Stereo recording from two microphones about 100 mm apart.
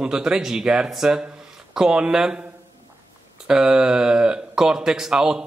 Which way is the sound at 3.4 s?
5° right (ahead or behind).